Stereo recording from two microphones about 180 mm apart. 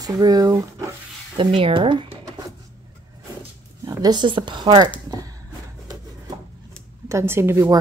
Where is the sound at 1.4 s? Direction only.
30° right (ahead or behind).